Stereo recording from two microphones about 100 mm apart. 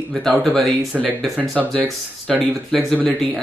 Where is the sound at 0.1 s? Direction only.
5° left (ahead or behind).